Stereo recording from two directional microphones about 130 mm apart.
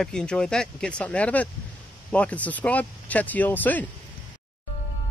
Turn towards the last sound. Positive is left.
turn(degrees=15)  # may be behind; listen again after turning